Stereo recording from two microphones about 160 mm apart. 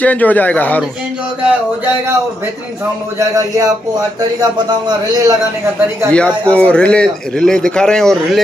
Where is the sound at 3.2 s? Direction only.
20° right (ahead or behind).